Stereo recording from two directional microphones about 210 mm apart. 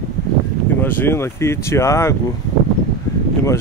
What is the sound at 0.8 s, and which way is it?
Speech, 10° left (ahead or behind).